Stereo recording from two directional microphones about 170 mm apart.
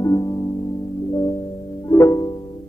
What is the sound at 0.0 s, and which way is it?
Music, 20° left (ahead or behind).